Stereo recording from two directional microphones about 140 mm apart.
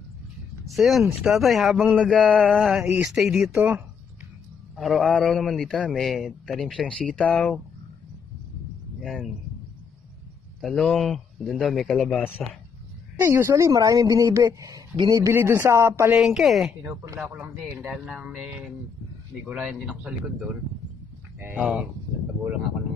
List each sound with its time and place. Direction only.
0.7 s a man's voice: centre (ahead or behind)
4.7 s a man's voice: centre (ahead or behind)
9.0 s speech: centre (ahead or behind)
10.6 s a man's voice: 5° left (ahead or behind)
13.2 s a woman's voice: 20° right (ahead or behind)
16.2 s a man's voice: 5° right (ahead or behind)
16.9 s a woman's voice: 20° right (ahead or behind)
17.6 s a man's voice: centre (ahead or behind)